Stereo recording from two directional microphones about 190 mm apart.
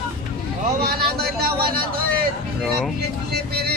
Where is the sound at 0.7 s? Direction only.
55° right (ahead or behind).